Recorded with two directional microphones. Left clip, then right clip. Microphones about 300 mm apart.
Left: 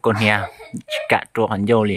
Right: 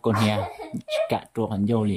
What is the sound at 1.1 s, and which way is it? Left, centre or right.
Speech, centre.